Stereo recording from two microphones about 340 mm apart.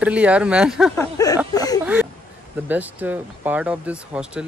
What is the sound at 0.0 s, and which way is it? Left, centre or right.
Speech, centre.